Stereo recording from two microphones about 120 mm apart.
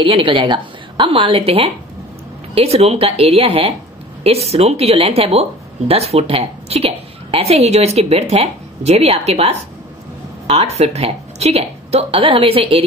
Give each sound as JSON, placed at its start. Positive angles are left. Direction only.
{"t": 0.0, "sound": "a woman's voice", "side_deg": -45}